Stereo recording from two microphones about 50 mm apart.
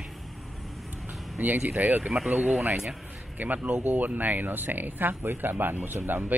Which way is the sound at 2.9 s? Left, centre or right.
Right.